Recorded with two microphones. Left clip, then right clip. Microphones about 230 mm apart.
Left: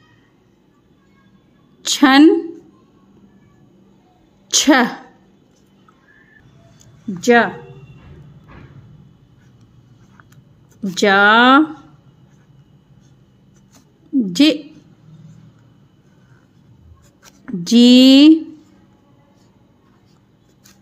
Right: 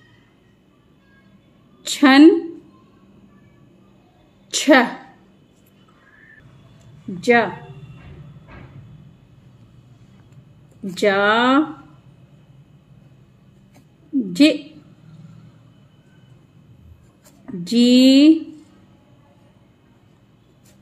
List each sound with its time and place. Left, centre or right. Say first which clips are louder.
1.8 s a woman's voice: left 1 dB; left
4.5 s a sound: left 1 dB; left
7.2 s speech: left 3 dB; left
11.0 s speech: left 5 dB; left
14.3 s a woman's voice: left 1 dB; left
17.6 s speech: left 4 dB; left